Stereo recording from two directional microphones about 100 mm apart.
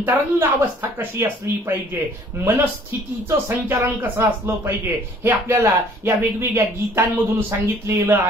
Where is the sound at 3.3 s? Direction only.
35° right (ahead or behind).